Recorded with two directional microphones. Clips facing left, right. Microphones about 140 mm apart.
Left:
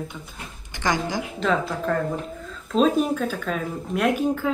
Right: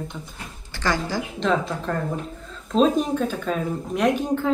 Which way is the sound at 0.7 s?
15° left (ahead or behind).